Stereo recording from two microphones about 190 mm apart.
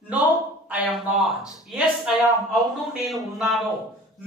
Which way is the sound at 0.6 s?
5° right (ahead or behind).